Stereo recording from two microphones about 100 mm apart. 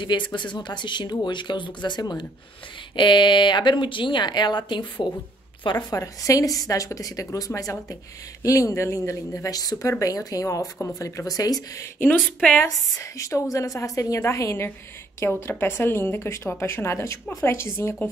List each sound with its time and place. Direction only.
0.0 s a woman's voice: 50° left (ahead or behind)
5.9 s speech: 35° left (ahead or behind)
12.2 s a woman's voice: 5° left (ahead or behind)
12.6 s a woman's voice: 30° left (ahead or behind)